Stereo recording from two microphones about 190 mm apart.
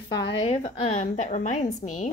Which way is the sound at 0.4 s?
35° left (ahead or behind).